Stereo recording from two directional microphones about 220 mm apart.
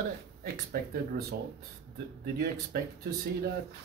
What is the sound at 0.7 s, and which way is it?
Speech, 45° right (ahead or behind).